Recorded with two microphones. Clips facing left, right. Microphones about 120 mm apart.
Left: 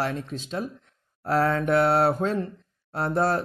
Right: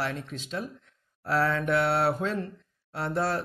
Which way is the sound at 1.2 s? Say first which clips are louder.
Left 3 dB; 45° left (ahead or behind).